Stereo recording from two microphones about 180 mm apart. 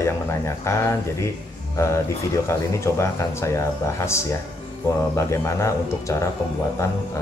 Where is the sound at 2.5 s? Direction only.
15° left (ahead or behind).